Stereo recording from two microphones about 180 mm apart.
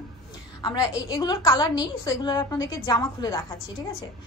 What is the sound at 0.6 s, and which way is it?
A woman's voice, 25° left (ahead or behind).